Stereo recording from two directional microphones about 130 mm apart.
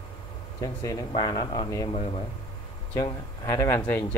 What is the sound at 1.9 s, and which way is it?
Speech, 55° left (ahead or behind).